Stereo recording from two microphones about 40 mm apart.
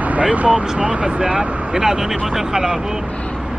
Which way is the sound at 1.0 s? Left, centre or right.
Centre.